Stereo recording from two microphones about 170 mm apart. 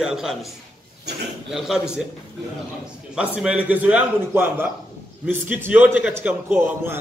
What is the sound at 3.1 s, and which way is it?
A man's voice, 5° right (ahead or behind).